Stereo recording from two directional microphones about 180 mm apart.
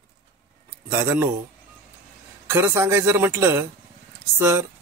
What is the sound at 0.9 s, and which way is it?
Speech, 15° right (ahead or behind).